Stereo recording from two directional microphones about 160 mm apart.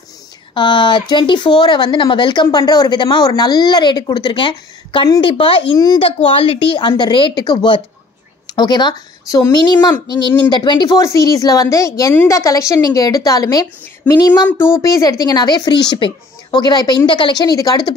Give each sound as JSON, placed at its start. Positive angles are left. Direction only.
{"t": 0.6, "sound": "a woman's voice", "side_deg": 30}